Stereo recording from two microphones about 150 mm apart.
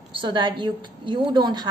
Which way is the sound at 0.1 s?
30° right (ahead or behind).